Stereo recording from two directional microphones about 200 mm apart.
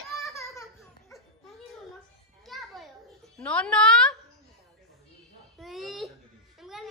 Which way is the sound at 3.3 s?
5° left (ahead or behind).